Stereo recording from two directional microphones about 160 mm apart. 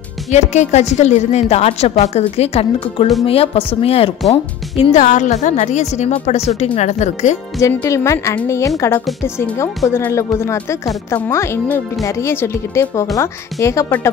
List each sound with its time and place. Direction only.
0.3 s a woman's voice: 45° left (ahead or behind)
7.6 s speech: 20° left (ahead or behind)